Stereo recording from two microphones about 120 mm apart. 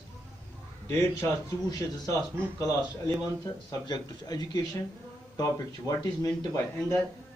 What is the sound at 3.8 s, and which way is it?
Speech, 35° left (ahead or behind).